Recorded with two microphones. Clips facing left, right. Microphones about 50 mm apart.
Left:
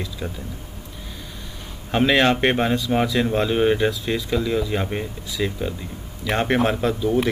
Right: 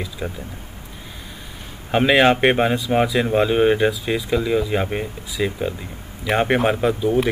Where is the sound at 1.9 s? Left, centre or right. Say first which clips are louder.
Right 3 dB; centre.